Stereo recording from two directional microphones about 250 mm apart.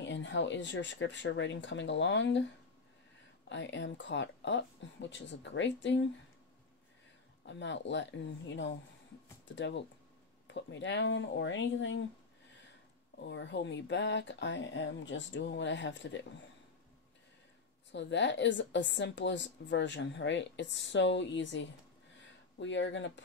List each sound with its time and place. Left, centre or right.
0.0 s a woman's voice: left
3.4 s a woman's voice: left
7.4 s a woman's voice: left
13.2 s a woman's voice: left
17.9 s a woman's voice: left